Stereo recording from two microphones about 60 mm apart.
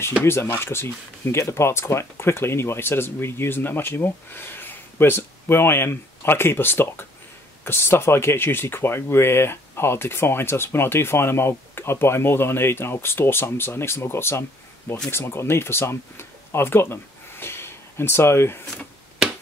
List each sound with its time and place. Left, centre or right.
0.2 s speech: left